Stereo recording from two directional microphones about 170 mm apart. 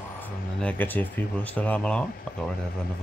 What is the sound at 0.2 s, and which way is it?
Speech, 10° left (ahead or behind).